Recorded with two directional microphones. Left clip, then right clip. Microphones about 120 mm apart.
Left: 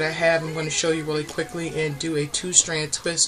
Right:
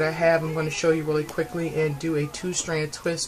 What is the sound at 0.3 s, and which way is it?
Speech, 5° left (ahead or behind).